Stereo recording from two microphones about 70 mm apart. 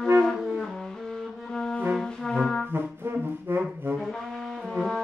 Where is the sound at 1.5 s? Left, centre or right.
Centre.